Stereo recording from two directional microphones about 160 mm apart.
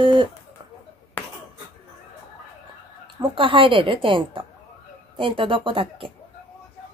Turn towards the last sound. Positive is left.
turn(degrees=-35)  # may be behind; listen again after turning